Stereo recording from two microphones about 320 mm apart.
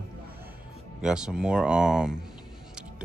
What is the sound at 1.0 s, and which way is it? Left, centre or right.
Speech, centre.